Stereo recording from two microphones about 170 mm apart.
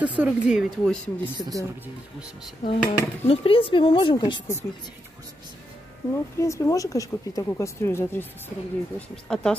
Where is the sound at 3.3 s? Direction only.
35° left (ahead or behind).